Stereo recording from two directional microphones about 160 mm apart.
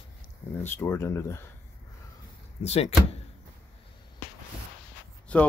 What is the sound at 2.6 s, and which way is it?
Speech, 40° left (ahead or behind).